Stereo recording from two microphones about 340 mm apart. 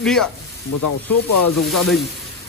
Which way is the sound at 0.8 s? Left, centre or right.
Left.